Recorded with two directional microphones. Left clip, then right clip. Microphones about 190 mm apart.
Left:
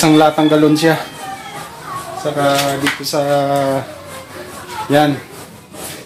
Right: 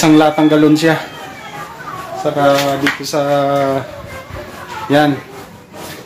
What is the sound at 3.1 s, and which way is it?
Speech, 10° left (ahead or behind).